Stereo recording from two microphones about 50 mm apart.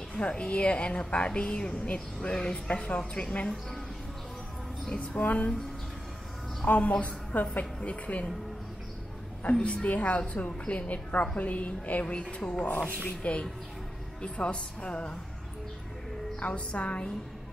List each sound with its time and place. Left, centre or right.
0.1 s a woman's voice: centre
3.0 s a woman's voice: centre
4.8 s a woman's voice: centre
5.2 s a woman's voice: left
6.6 s a woman's voice: left
9.4 s a woman's voice: left
16.3 s a woman's voice: left